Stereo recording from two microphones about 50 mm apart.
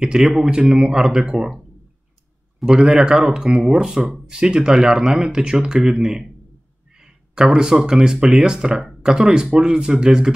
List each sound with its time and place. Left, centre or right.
0.0 s speech: centre
2.6 s speech: centre
6.9 s a sound: centre
7.5 s speech: centre